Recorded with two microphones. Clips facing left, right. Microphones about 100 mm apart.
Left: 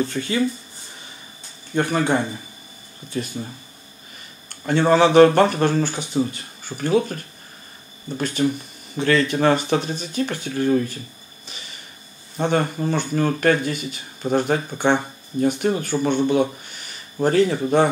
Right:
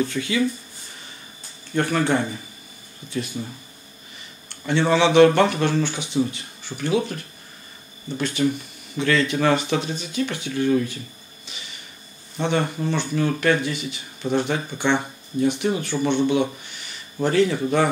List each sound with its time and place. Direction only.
0.0 s speech: 40° left (ahead or behind)
1.8 s speech: 15° left (ahead or behind)
3.4 s speech: 30° left (ahead or behind)
4.5 s speech: 45° left (ahead or behind)
12.4 s speech: 40° left (ahead or behind)